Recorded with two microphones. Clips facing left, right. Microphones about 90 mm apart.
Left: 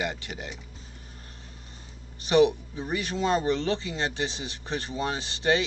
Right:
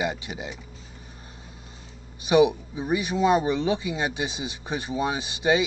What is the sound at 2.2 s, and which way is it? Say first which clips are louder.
Speech: right 2 dB; 15° right (ahead or behind).